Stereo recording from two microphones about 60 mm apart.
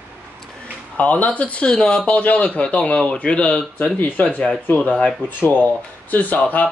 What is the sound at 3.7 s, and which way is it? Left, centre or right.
Speech, left.